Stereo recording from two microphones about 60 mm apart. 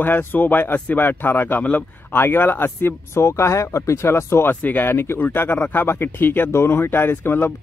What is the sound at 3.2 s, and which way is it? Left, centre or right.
Speech, left.